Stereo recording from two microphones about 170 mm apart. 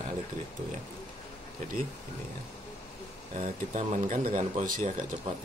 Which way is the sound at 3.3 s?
50° right (ahead or behind).